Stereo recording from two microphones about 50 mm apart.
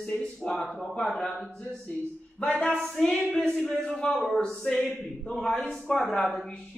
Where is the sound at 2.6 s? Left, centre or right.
Centre.